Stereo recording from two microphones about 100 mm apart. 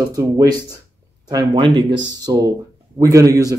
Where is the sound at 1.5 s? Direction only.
50° right (ahead or behind).